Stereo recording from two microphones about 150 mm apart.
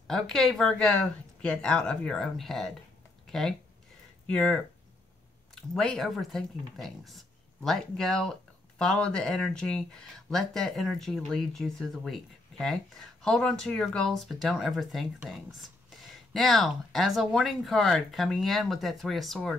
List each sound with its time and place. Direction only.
0.0 s speech: 5° left (ahead or behind)